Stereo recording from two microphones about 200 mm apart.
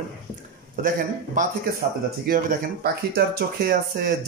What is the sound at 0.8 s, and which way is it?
Speech, 40° right (ahead or behind).